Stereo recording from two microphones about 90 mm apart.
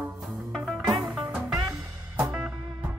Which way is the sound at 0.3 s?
Centre (ahead or behind).